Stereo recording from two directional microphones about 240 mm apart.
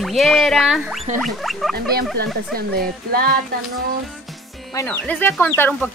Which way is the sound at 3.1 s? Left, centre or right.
Right.